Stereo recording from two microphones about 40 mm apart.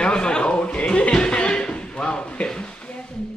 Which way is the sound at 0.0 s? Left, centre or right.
Left.